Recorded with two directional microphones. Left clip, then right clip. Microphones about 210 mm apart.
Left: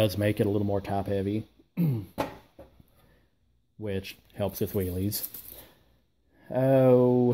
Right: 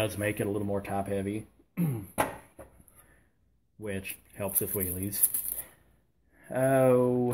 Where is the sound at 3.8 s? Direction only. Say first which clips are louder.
Left 3 dB; 45° left (ahead or behind).